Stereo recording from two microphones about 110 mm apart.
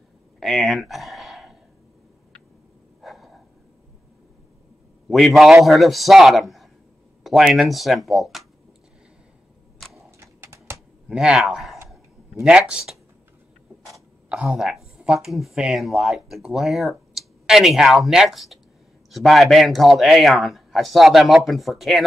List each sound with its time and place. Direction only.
0.4 s a sound: centre (ahead or behind)
3.0 s a sound: centre (ahead or behind)
5.1 s speech: centre (ahead or behind)
10.1 s bird: 25° right (ahead or behind)
11.1 s speech: 5° right (ahead or behind)
14.3 s a woman's voice: 10° right (ahead or behind)